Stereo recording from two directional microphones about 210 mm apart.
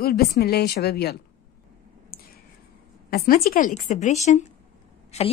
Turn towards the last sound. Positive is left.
turn(degrees=30)  # may be behind; listen again after turning